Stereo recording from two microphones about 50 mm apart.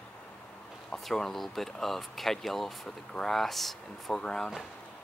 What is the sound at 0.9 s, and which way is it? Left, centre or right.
Speech, centre.